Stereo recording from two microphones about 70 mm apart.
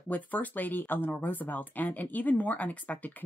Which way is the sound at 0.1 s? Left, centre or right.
Left.